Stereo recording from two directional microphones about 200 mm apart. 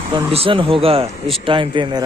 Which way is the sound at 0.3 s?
30° right (ahead or behind).